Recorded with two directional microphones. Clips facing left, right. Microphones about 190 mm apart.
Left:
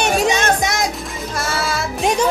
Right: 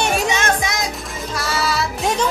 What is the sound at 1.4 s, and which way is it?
Music, 50° left (ahead or behind).